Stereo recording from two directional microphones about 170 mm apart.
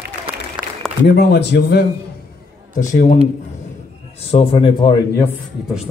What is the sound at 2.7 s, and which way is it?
Speech, 55° left (ahead or behind).